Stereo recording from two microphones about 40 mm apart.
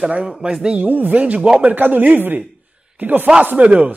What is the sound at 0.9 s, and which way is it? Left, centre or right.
Speech, right.